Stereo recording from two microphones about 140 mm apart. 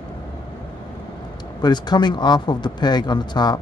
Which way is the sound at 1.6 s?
30° left (ahead or behind).